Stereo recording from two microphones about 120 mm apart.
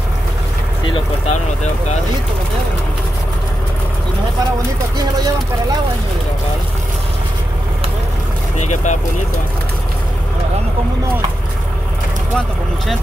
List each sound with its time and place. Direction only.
1.2 s speech: 70° left (ahead or behind)
8.5 s speech: 80° left